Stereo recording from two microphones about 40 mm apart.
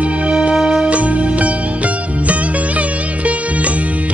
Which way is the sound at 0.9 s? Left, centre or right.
Right.